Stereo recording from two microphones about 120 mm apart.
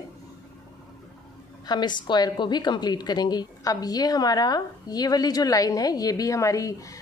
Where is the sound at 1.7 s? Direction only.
35° left (ahead or behind).